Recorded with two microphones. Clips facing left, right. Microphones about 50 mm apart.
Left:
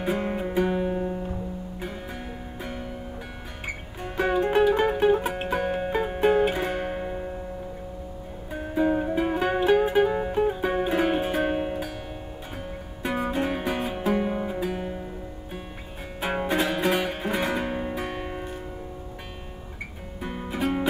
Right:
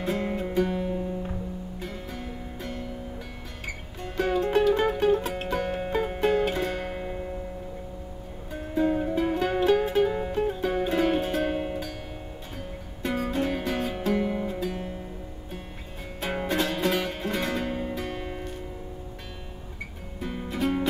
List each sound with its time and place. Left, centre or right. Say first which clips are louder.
0.0 s music: left 2 dB; left
3.6 s music: left 2 dB; centre
8.5 s music: left 1 dB; centre
13.0 s music: left 1 dB; centre
16.2 s music: left 2 dB; centre
20.2 s music: even; centre